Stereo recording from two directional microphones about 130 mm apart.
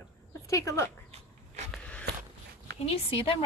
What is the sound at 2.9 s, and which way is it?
Speech, 45° left (ahead or behind).